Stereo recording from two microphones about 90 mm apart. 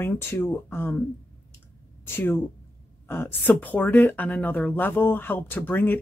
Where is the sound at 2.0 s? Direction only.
25° left (ahead or behind).